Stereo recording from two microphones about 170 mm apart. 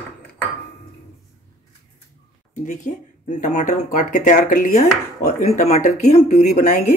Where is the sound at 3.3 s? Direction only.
45° left (ahead or behind).